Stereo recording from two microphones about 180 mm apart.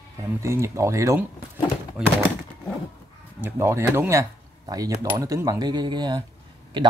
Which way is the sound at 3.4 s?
15° right (ahead or behind).